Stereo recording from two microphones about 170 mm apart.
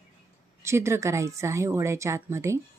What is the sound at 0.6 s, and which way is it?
A woman's voice, 15° right (ahead or behind).